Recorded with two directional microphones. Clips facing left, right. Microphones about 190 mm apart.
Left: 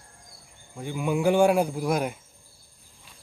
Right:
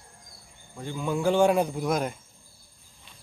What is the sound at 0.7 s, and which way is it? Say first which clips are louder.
Speech: left 2 dB; 15° left (ahead or behind).